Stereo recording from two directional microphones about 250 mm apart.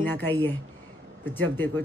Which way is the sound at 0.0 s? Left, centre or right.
Centre.